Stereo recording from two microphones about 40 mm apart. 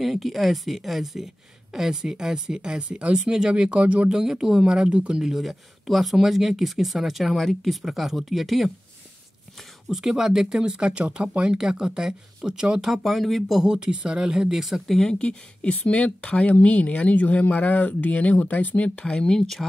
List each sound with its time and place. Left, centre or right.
0.0 s speech: centre; by 3.8 s right
3.8 s speech: right
4.1 s speech: centre
4.8 s speech: right
5.3 s speech: centre
9.8 s speech: centre
12.8 s speech: centre
13.6 s speech: centre
14.6 s speech: centre
15.0 s speech: centre
15.2 s speech: left
18.9 s speech: left